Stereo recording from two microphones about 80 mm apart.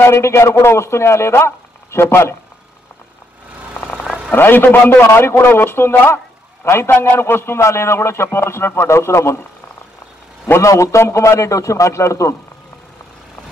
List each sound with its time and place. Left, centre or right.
0.0 s a man's voice: left
4.3 s a man's voice: left